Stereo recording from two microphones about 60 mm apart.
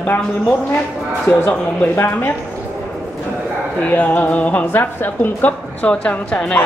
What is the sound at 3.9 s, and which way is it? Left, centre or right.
A woman's voice, left.